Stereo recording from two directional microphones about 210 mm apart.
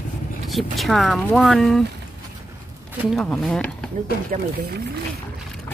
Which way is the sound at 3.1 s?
Centre (ahead or behind).